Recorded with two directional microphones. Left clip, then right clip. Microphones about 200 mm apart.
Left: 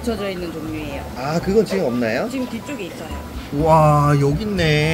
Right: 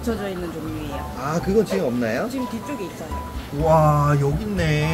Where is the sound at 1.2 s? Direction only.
5° left (ahead or behind).